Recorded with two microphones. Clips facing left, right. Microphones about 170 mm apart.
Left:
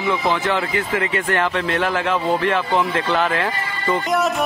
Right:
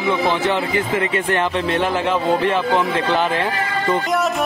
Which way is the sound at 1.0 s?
25° right (ahead or behind).